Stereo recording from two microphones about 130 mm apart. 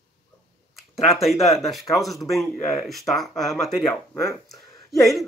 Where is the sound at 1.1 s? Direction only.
Centre (ahead or behind).